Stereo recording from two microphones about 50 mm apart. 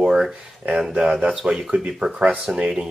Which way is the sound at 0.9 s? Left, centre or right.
Centre.